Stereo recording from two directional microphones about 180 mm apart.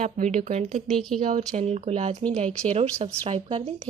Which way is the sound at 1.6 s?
35° right (ahead or behind).